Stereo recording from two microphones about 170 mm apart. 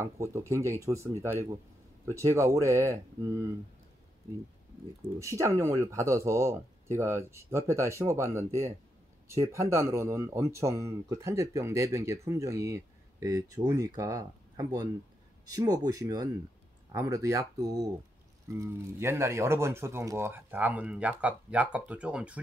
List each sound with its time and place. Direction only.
0.0 s speech: 15° right (ahead or behind)
5.2 s speech: 15° right (ahead or behind)